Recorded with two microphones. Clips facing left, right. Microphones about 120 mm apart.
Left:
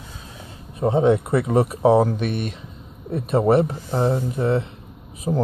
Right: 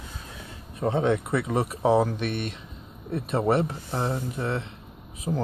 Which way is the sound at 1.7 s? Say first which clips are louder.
Left 4 dB; 20° left (ahead or behind).